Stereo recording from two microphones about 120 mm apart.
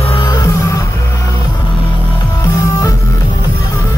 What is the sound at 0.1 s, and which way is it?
Music, 35° left (ahead or behind).